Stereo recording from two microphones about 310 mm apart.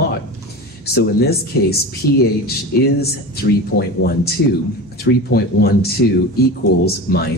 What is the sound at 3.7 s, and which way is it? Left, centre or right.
Speech, left.